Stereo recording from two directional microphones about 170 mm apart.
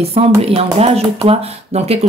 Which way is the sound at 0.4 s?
35° right (ahead or behind).